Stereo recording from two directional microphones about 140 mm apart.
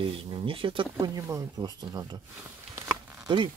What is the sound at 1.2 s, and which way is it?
Speech, 25° right (ahead or behind).